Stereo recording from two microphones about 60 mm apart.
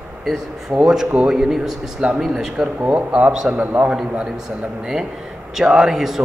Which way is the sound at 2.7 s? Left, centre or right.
Right.